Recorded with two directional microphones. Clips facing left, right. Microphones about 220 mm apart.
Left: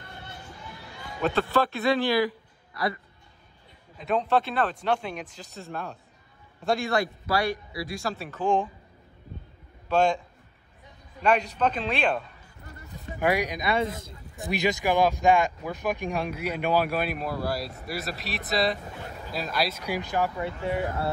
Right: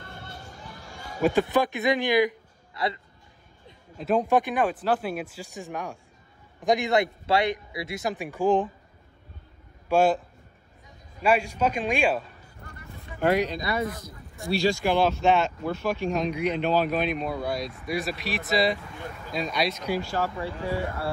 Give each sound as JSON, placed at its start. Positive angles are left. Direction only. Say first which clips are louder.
{"t": 0.0, "sound": "a sound", "louder": "right 1 dB", "side_deg": -45}
{"t": 1.2, "sound": "a man's voice", "louder": "right 2 dB", "side_deg": -15}
{"t": 4.2, "sound": "speech", "louder": "right 2 dB", "side_deg": -15}
{"t": 4.7, "sound": "a man's voice", "louder": "right 2 dB", "side_deg": -5}
{"t": 9.8, "sound": "a man's voice", "louder": "right 2 dB", "side_deg": -5}
{"t": 11.2, "sound": "speech", "louder": "right 1 dB", "side_deg": -10}
{"t": 13.2, "sound": "speech", "louder": "right 2 dB", "side_deg": 10}
{"t": 13.7, "sound": "speech", "louder": "left 2 dB", "side_deg": 25}
{"t": 19.9, "sound": "speech", "louder": "even", "side_deg": 15}